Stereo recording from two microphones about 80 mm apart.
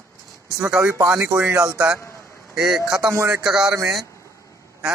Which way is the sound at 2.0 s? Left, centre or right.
Left.